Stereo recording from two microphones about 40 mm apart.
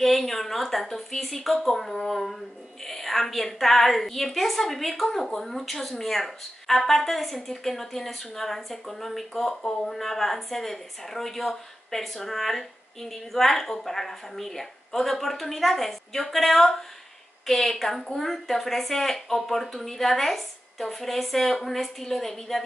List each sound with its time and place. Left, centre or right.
0.0 s a woman's voice: centre